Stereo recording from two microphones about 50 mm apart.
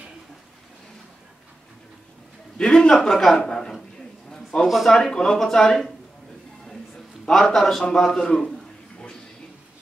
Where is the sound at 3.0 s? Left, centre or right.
Centre.